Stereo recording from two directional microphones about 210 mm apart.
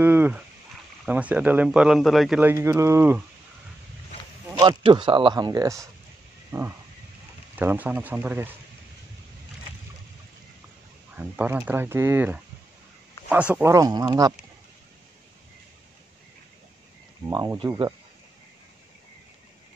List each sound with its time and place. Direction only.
0.0 s speech: 10° right (ahead or behind)
4.6 s speech: 20° right (ahead or behind)
11.1 s speech: 5° right (ahead or behind)
17.3 s speech: 20° right (ahead or behind)